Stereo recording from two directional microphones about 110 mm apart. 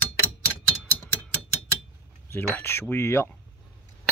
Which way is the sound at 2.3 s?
20° left (ahead or behind).